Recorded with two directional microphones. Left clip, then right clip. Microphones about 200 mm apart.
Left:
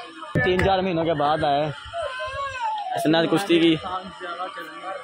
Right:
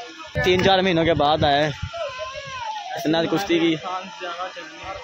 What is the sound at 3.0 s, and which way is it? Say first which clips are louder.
Speech: left 1 dB; centre (ahead or behind).